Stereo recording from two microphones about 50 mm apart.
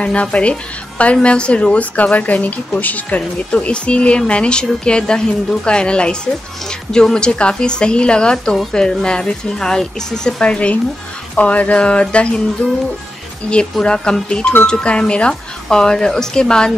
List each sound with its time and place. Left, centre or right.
0.0 s speech: left
13.7 s speech: centre